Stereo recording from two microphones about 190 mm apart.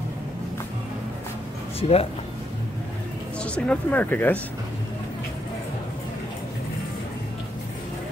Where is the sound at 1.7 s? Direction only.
30° left (ahead or behind).